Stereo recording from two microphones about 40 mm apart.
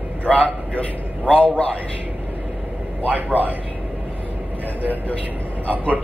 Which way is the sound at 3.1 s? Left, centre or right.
Right.